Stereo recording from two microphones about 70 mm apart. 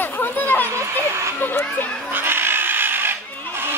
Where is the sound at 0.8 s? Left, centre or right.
Right.